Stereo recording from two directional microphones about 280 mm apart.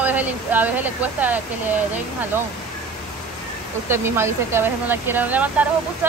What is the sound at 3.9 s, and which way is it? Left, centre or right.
Speech, centre.